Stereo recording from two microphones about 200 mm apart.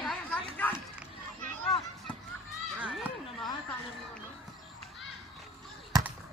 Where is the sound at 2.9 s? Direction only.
Centre (ahead or behind).